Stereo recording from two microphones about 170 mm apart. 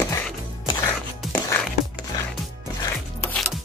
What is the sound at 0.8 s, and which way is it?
Music, 15° left (ahead or behind).